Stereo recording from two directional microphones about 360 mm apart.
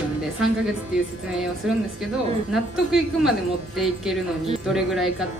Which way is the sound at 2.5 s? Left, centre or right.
Centre.